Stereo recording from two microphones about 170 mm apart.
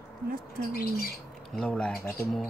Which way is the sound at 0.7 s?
60° left (ahead or behind).